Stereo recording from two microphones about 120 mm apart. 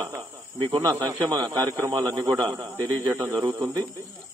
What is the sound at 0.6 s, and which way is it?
A man's voice, 40° right (ahead or behind).